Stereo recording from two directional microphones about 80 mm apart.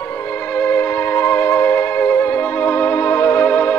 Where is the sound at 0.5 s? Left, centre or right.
Left.